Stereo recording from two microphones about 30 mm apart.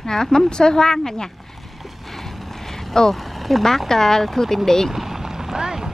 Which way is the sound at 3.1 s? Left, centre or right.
Centre.